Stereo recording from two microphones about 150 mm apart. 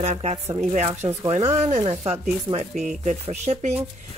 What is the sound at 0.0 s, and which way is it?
Speech, 45° right (ahead or behind).